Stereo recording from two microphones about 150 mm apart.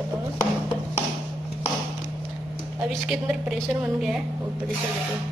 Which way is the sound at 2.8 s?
5° right (ahead or behind).